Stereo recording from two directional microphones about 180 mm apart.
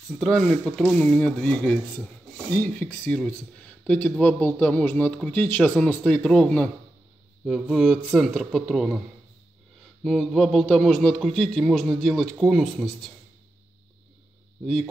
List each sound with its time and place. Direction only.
0.1 s a man's voice: centre (ahead or behind)
10.0 s a man's voice: centre (ahead or behind)